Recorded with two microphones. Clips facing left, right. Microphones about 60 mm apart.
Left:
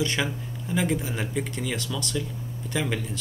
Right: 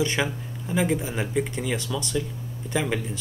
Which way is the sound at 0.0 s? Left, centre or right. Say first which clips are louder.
Right 2 dB; centre.